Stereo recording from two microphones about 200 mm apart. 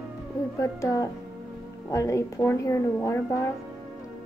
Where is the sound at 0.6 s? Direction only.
15° left (ahead or behind).